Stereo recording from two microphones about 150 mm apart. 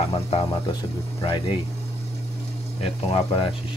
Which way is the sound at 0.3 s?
45° left (ahead or behind).